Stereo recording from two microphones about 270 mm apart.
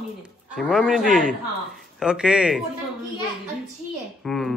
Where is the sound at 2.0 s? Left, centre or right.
Centre.